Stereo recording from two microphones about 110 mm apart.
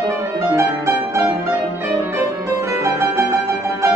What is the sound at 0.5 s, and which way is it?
Music, 25° right (ahead or behind).